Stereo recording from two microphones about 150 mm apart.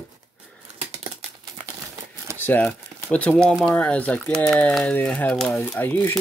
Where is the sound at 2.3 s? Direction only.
10° left (ahead or behind).